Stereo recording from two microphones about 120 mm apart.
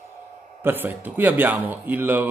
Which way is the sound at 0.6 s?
15° right (ahead or behind).